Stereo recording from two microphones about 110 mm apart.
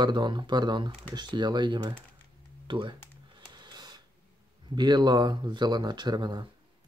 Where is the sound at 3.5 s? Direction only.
40° right (ahead or behind).